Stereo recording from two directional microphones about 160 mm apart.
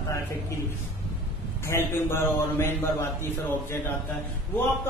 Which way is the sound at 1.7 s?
15° left (ahead or behind).